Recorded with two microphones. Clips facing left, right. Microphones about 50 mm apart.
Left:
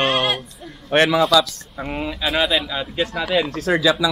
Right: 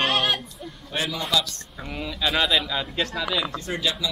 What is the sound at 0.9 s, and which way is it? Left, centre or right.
Speech, left.